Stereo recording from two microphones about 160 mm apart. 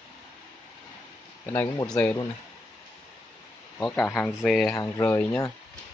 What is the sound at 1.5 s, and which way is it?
Speech, 20° left (ahead or behind).